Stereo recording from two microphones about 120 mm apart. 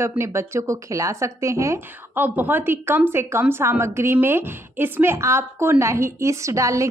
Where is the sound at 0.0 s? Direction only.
20° right (ahead or behind).